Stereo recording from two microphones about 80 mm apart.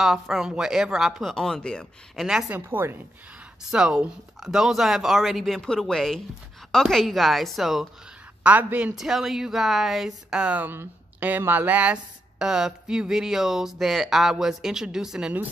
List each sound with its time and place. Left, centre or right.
0.0 s speech: centre
2.1 s a woman's voice: centre
2.5 s a woman's voice: right
3.7 s speech: centre
8.5 s a woman's voice: centre
8.9 s a woman's voice: centre